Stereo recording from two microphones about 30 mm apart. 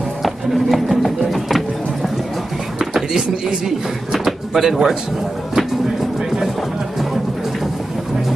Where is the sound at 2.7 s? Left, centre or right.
Centre.